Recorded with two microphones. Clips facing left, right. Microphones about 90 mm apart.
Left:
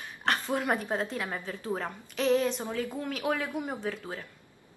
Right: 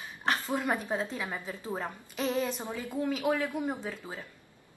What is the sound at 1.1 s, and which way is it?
A woman's voice, 10° right (ahead or behind).